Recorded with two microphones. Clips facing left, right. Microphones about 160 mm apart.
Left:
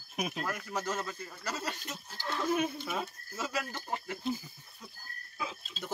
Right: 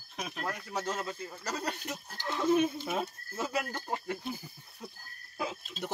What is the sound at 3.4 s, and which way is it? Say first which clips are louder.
Speech: right 3 dB; 50° right (ahead or behind).